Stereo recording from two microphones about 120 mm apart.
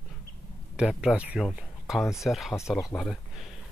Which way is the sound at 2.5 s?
25° left (ahead or behind).